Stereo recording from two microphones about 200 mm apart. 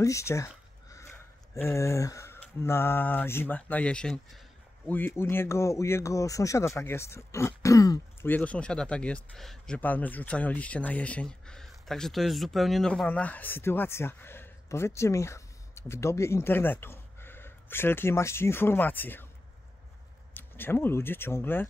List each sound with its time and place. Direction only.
0.0 s a sound: 15° left (ahead or behind)
1.7 s speech: 15° left (ahead or behind)
20.3 s speech: 10° left (ahead or behind)